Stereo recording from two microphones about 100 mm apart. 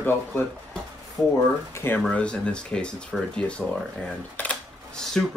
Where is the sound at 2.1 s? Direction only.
10° left (ahead or behind).